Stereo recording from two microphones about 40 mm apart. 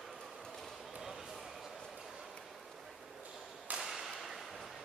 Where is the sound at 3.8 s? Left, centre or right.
Centre.